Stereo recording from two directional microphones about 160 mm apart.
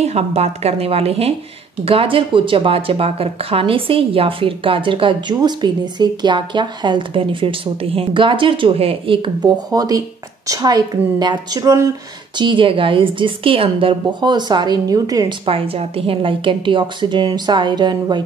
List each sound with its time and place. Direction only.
0.0 s speech: 40° right (ahead or behind); by 11.9 s 20° right (ahead or behind)
12.4 s speech: 30° right (ahead or behind)
15.4 s speech: 35° right (ahead or behind)